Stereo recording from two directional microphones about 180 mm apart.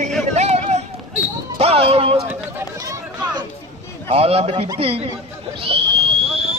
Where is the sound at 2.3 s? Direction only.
15° right (ahead or behind).